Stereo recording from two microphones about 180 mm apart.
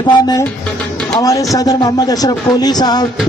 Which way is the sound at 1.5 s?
20° left (ahead or behind).